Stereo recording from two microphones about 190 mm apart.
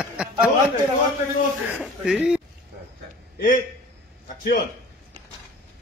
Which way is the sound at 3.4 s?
45° left (ahead or behind).